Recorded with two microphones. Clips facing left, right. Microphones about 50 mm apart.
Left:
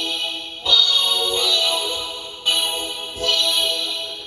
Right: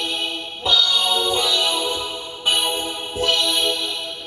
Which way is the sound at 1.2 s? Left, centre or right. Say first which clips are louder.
Right 1 dB; centre.